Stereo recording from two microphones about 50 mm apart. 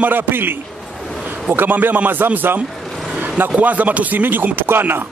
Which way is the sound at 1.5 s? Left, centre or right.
Right.